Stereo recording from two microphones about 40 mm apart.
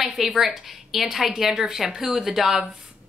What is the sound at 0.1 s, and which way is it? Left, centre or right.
A woman's voice, centre.